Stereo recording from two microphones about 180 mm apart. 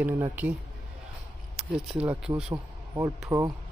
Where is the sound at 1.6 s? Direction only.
Centre (ahead or behind).